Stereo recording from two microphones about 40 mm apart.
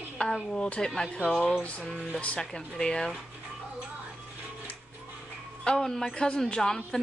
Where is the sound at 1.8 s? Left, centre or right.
Centre.